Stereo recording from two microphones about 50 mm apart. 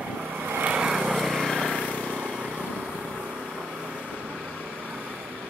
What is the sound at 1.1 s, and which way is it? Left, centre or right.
Lawn mower, centre.